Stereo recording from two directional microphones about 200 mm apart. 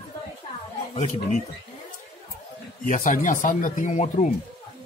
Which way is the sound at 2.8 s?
40° left (ahead or behind).